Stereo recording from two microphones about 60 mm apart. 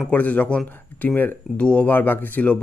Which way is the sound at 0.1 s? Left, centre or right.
Left.